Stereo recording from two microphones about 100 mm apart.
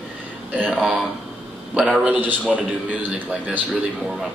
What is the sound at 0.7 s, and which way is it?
A man's voice, centre (ahead or behind).